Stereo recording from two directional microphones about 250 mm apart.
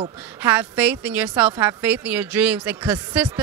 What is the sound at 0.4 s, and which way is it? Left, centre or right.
Speech, centre.